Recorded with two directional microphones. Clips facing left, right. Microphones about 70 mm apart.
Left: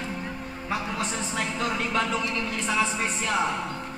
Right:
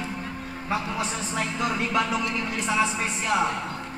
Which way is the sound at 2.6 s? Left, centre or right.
Centre.